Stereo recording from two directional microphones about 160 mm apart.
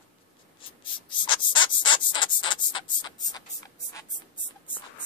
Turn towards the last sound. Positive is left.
turn(degrees=20)  # may be behind; listen again after turning